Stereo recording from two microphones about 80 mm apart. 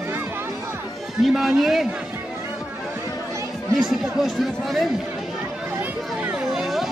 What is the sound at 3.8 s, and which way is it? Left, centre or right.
Speech, centre.